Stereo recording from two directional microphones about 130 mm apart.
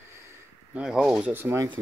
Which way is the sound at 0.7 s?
5° right (ahead or behind).